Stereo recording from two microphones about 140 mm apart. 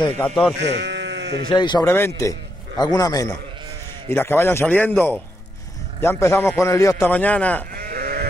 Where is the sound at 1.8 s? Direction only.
20° left (ahead or behind).